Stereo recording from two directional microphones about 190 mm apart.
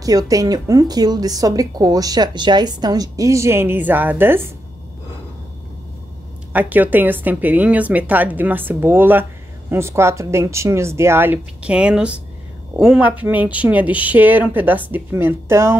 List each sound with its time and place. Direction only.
0.0 s a woman's voice: 20° right (ahead or behind)
6.5 s speech: 10° right (ahead or behind)